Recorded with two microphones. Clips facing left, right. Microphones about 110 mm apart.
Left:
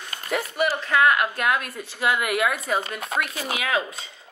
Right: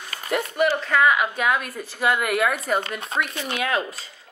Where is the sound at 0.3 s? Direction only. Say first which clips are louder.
Right 3 dB; 5° left (ahead or behind).